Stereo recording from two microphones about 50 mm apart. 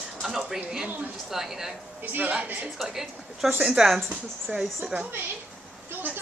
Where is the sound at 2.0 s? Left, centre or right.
Right.